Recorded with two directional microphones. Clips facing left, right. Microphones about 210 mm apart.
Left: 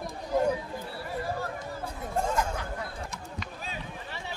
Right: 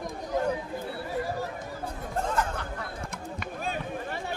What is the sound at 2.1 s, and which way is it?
Chatter, 10° left (ahead or behind).